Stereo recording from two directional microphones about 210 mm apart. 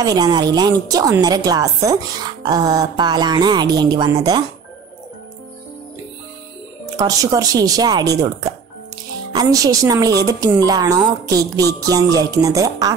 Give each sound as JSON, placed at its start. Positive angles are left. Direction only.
{"t": 0.0, "sound": "speech", "side_deg": -20}
{"t": 7.0, "sound": "a woman's voice", "side_deg": -15}